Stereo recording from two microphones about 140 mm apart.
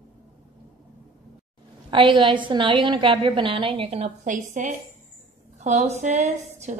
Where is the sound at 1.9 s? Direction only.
35° right (ahead or behind); by 4.7 s 65° right (ahead or behind).